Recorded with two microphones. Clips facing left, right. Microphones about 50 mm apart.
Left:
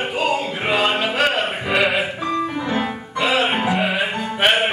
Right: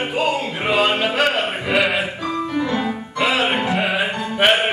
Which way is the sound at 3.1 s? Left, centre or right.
Centre.